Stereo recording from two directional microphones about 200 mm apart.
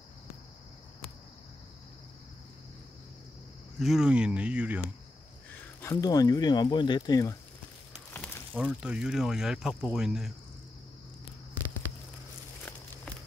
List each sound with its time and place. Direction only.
3.8 s speech: 5° right (ahead or behind)
5.6 s speech: 10° left (ahead or behind)
8.1 s a sound: 10° left (ahead or behind)
8.5 s speech: 5° right (ahead or behind)